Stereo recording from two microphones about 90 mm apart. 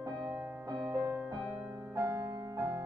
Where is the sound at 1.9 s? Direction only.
40° right (ahead or behind).